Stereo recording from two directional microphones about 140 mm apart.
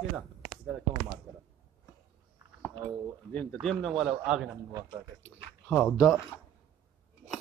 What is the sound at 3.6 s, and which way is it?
Speech, centre (ahead or behind).